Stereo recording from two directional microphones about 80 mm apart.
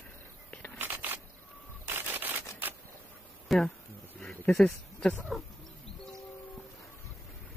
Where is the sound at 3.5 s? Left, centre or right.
Centre.